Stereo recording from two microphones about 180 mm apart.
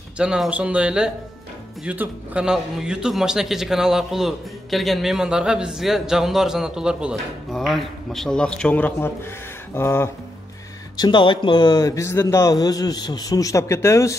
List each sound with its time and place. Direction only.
0.2 s a man's voice: 5° right (ahead or behind); by 10.0 s 15° left (ahead or behind)
11.0 s a man's voice: 25° left (ahead or behind)